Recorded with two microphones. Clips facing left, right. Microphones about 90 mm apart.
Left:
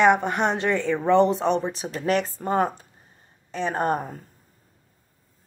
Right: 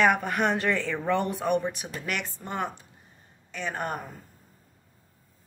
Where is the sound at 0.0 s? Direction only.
20° left (ahead or behind).